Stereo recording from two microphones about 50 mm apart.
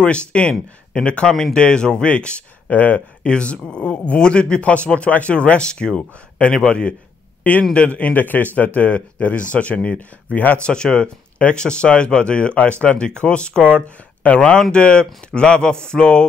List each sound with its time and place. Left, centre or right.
0.0 s a man's voice: left
9.9 s a man's voice: left
10.5 s speech: centre
13.8 s speech: left
14.7 s speech: centre